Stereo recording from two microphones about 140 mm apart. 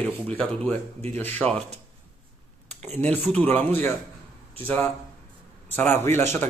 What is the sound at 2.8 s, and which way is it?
A man's voice, 10° left (ahead or behind).